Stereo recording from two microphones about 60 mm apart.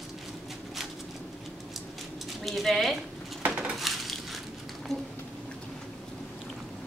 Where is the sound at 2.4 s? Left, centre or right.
Centre.